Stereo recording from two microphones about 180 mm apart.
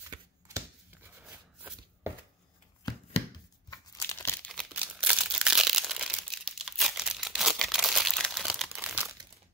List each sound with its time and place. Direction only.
0.1 s shuffling cards: 15° right (ahead or behind)
1.2 s a sound: 10° right (ahead or behind)
3.7 s crumpling: 15° left (ahead or behind); by 9.1 s 5° right (ahead or behind)